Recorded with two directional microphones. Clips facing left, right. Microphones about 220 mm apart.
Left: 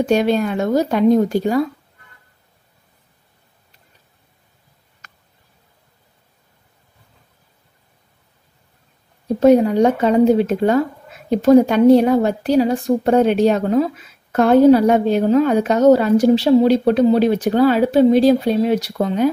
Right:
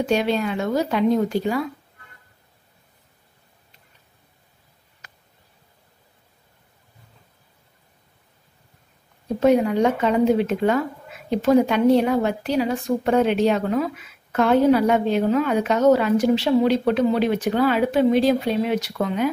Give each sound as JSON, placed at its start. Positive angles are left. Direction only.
{"t": 0.0, "sound": "speech", "side_deg": 45}
{"t": 9.4, "sound": "a woman's voice", "side_deg": 40}